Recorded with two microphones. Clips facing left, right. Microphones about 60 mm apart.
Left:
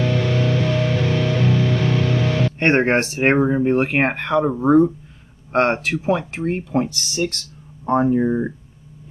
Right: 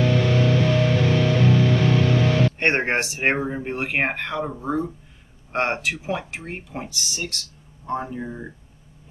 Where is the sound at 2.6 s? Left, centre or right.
Left.